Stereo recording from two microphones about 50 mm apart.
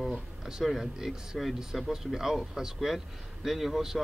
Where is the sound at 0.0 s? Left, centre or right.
Centre.